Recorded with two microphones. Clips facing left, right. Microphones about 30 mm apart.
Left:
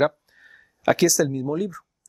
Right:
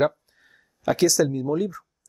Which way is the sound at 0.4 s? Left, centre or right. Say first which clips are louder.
Left 7 dB; left.